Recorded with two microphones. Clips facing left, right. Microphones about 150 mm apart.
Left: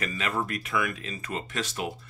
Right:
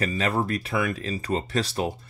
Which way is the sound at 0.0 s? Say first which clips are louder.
Right 5 dB; 35° right (ahead or behind).